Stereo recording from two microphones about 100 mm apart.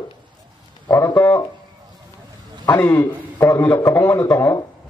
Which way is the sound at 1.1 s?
25° left (ahead or behind).